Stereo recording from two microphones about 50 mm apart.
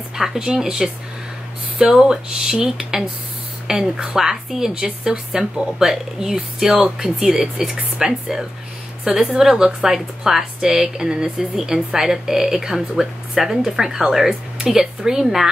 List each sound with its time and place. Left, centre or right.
0.1 s a woman's voice: centre